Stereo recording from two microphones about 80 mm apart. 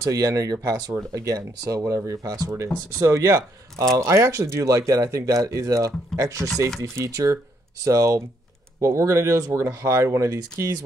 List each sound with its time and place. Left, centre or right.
0.0 s speech: right